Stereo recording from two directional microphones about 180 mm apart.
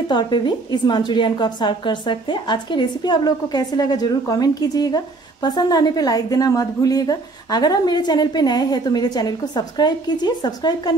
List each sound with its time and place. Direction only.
0.1 s a woman's voice: 25° left (ahead or behind)